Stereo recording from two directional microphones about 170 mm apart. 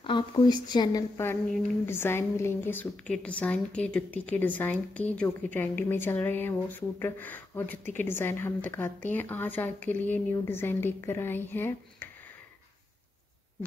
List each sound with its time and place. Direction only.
0.0 s a woman's voice: 25° left (ahead or behind)